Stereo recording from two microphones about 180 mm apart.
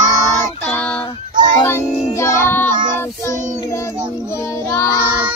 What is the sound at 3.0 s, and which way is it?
Child singing, 15° left (ahead or behind).